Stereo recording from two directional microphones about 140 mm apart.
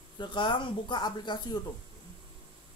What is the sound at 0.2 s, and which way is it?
Speech, 35° left (ahead or behind).